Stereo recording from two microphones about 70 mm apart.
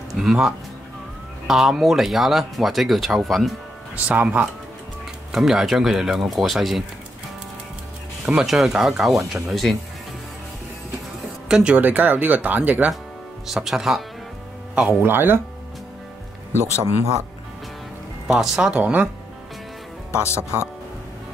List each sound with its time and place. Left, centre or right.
0.1 s speech: centre
4.1 s speech: right
5.3 s speech: centre
8.3 s speech: centre
11.4 s speech: centre
11.7 s speech: right
13.5 s speech: centre
14.9 s speech: right
18.2 s speech: centre
18.8 s speech: right
20.2 s speech: left